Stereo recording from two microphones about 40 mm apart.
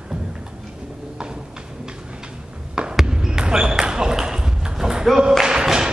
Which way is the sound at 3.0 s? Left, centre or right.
Centre.